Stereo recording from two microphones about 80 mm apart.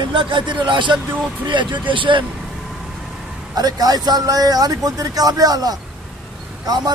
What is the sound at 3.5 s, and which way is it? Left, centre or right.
Speech, right.